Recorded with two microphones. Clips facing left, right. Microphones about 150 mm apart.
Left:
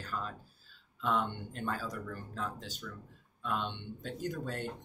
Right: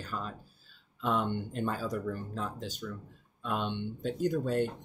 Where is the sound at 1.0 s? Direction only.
20° right (ahead or behind).